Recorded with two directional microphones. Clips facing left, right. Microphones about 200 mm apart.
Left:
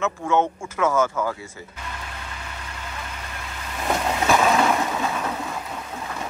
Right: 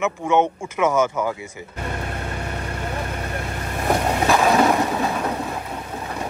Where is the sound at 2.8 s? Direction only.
55° right (ahead or behind).